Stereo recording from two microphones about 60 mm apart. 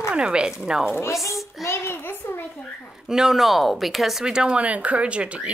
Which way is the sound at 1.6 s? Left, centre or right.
Left.